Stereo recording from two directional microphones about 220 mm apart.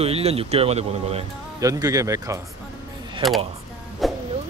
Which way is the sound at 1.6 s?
15° right (ahead or behind).